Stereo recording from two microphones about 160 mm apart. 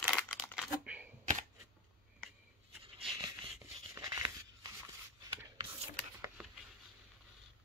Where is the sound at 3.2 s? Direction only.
20° right (ahead or behind).